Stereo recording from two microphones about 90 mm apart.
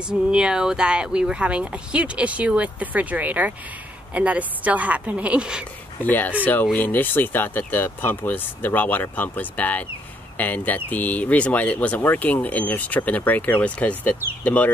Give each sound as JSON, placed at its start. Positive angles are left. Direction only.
{"t": 0.1, "sound": "speech", "side_deg": -10}
{"t": 6.0, "sound": "speech", "side_deg": 20}